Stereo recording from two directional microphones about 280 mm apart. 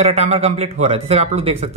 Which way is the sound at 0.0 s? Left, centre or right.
Right.